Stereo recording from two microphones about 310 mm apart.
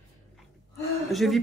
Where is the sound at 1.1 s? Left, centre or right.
Centre.